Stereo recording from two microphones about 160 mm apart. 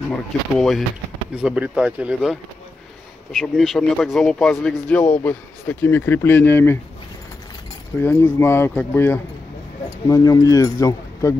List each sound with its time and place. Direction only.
0.6 s speech: centre (ahead or behind)
3.3 s speech: centre (ahead or behind)
8.0 s speech: 15° left (ahead or behind)